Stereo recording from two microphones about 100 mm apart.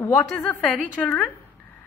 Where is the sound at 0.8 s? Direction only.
15° left (ahead or behind).